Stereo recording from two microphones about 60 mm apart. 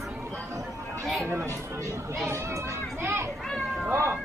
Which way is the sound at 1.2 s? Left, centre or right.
Right.